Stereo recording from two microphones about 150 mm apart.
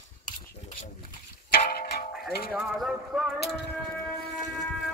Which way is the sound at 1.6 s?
90° left.